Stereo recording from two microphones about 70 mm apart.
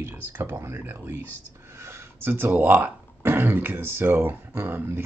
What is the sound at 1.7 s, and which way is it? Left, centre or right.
Speech, right.